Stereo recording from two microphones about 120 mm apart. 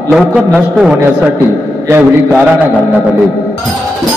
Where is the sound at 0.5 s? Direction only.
10° right (ahead or behind).